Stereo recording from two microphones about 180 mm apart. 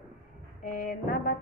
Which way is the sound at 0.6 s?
50° left (ahead or behind).